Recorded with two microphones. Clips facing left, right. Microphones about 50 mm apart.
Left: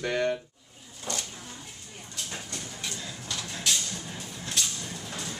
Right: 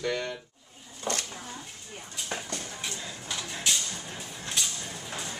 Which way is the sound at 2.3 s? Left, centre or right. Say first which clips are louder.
Right 6 dB; right.